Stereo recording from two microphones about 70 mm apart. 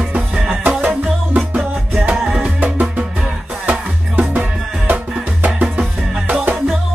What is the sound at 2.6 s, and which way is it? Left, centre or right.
Music, right.